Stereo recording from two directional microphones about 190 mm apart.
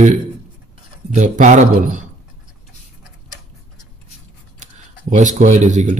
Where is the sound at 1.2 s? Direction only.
40° right (ahead or behind).